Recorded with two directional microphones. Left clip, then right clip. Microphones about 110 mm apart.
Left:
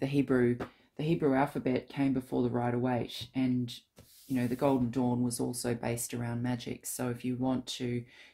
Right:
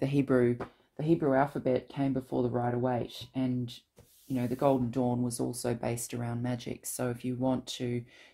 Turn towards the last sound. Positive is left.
turn(degrees=-35)  # may be behind; listen again after turning